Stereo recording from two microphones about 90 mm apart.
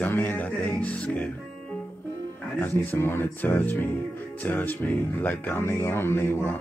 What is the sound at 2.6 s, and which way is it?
Speech, 25° left (ahead or behind).